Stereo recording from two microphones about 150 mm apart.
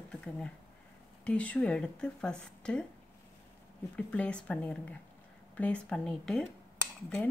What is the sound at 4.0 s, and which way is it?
A woman's voice, 10° left (ahead or behind).